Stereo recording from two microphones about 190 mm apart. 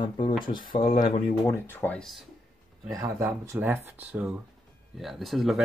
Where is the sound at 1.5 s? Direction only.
10° left (ahead or behind).